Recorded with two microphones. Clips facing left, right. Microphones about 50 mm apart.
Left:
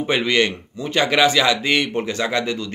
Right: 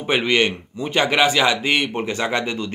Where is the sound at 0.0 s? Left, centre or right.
Centre.